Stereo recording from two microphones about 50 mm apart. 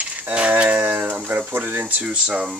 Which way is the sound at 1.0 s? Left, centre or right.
Right.